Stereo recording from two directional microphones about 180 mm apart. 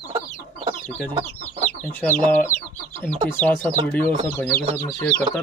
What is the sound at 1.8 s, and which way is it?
Speech, 10° left (ahead or behind).